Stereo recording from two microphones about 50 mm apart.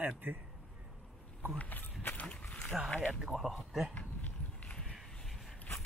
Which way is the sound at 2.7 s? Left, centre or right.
Centre.